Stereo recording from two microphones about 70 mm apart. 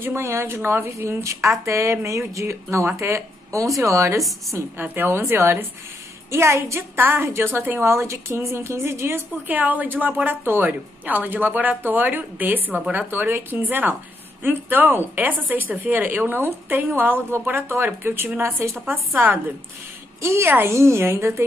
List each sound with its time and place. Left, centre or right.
0.0 s a woman's voice: right
4.7 s a woman's voice: right
7.0 s a woman's voice: right
20.2 s a woman's voice: right